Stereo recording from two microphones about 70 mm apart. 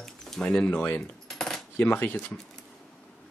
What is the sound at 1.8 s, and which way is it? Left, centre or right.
Speech, left.